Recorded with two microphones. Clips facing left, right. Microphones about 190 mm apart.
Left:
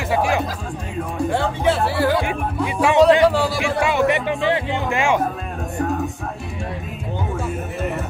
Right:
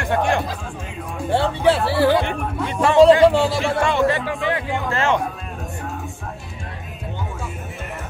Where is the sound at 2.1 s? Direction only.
5° left (ahead or behind).